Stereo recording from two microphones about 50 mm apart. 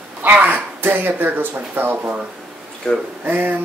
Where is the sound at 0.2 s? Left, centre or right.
Right.